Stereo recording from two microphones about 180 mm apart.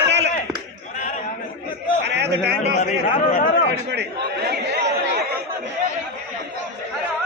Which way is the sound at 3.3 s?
55° left (ahead or behind).